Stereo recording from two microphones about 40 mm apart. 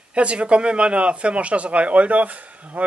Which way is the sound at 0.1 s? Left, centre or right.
Right.